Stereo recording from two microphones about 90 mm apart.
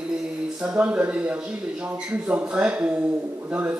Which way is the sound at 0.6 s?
15° right (ahead or behind).